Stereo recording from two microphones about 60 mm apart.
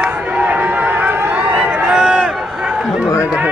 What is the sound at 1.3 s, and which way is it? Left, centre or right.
Run, right.